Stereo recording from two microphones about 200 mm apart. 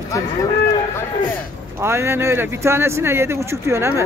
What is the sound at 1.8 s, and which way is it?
Speech, 10° right (ahead or behind).